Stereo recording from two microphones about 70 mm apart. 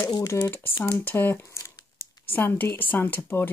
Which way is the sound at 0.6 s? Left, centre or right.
Left.